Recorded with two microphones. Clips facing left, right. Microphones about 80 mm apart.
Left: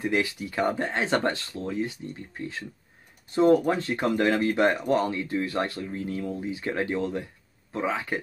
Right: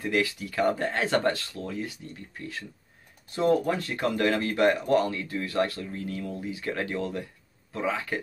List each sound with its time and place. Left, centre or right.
0.0 s speech: left